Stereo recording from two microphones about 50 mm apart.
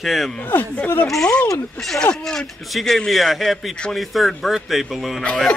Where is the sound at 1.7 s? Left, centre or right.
Centre.